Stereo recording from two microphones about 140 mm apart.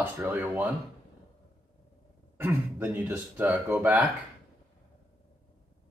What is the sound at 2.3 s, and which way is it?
Speech, 15° right (ahead or behind).